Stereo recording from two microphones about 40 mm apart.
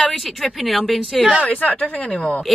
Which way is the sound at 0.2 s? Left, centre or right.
Centre.